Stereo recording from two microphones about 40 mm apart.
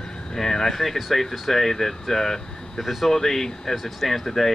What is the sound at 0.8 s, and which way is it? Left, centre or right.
Speech, centre.